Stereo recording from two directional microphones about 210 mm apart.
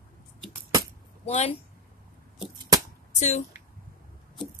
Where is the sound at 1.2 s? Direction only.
30° left (ahead or behind).